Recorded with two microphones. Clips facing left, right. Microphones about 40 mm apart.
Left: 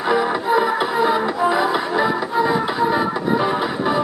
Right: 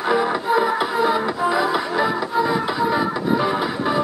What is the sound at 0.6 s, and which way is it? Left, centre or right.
Music, left.